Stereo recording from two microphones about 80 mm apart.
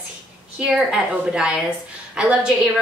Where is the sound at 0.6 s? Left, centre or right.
Centre.